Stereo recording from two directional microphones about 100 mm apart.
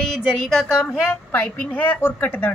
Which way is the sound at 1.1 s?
15° left (ahead or behind).